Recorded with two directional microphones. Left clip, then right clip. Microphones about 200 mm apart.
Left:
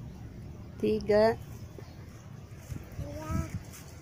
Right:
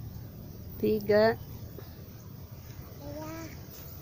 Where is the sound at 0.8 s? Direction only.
Centre (ahead or behind).